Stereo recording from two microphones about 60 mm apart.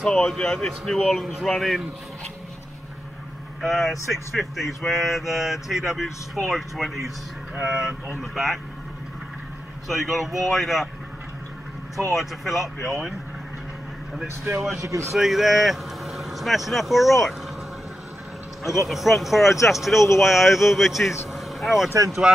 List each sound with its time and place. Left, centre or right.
0.0 s speech: centre
3.6 s speech: centre
9.8 s speech: centre
12.2 s speech: centre
14.4 s speech: right
14.8 s a man's voice: right
15.1 s speech: centre
18.9 s speech: centre
21.3 s vehicle: centre